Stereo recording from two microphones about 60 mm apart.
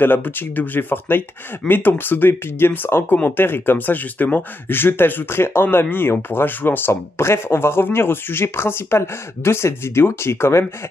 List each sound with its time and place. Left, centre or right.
0.0 s speech: left